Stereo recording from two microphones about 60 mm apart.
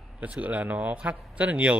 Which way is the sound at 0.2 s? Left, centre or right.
Right.